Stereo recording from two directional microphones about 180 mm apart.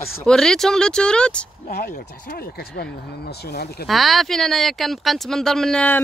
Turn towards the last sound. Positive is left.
turn(degrees=5)  # may be behind; listen again after turning